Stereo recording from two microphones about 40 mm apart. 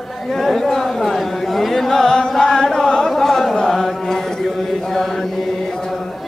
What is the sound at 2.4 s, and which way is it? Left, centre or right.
Chant, centre.